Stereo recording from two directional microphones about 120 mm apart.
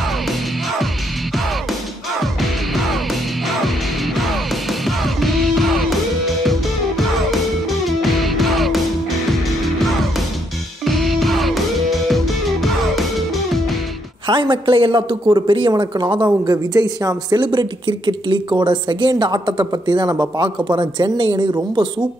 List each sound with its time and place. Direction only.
2.7 s music: centre (ahead or behind)
10.9 s music: centre (ahead or behind)
14.2 s a man's voice: 40° right (ahead or behind)